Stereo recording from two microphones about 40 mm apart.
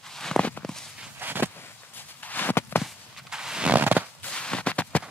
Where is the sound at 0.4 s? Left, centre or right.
Left.